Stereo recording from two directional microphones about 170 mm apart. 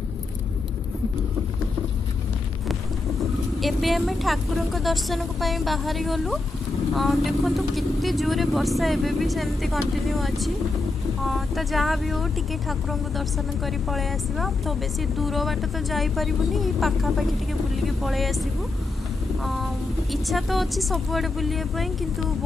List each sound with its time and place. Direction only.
3.6 s speech: centre (ahead or behind)